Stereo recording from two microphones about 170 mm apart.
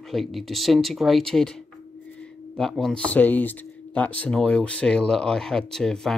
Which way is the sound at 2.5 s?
Centre (ahead or behind).